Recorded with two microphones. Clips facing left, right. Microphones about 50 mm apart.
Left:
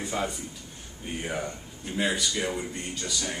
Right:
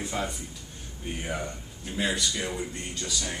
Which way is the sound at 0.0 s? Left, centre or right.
Centre.